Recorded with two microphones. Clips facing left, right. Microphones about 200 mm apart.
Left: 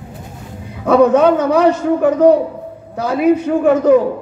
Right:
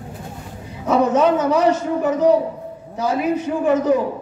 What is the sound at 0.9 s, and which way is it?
A man's voice, 60° left (ahead or behind).